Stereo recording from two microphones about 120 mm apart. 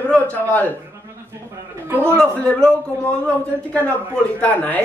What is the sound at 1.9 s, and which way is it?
Speech, 20° right (ahead or behind).